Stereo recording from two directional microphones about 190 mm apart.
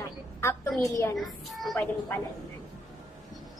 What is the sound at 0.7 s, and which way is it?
Speech, 15° left (ahead or behind).